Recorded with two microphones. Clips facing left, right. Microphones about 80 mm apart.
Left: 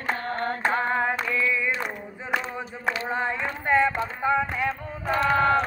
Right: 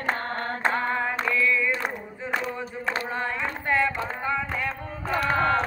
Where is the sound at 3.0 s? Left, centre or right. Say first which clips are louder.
Left 2 dB; centre.